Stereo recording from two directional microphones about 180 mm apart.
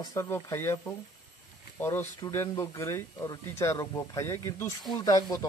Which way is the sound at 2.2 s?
15° left (ahead or behind).